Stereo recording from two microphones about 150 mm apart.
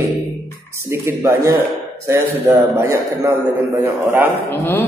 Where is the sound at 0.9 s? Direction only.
15° right (ahead or behind).